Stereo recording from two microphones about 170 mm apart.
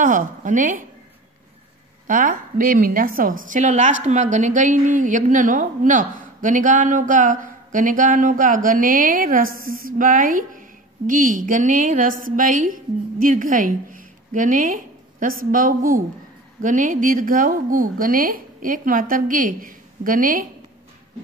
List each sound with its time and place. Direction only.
0.0 s a woman's voice: 50° right (ahead or behind)
2.0 s a woman's voice: 50° right (ahead or behind)